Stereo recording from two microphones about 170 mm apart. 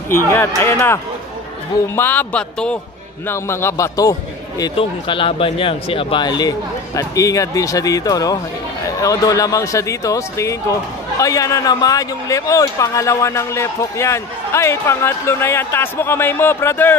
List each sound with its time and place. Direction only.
0.6 s a man's voice: 15° left (ahead or behind)